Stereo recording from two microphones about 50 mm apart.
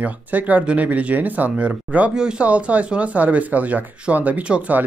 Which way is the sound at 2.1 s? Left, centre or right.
Centre.